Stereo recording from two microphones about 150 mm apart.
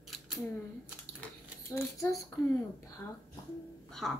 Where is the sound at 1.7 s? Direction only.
20° left (ahead or behind).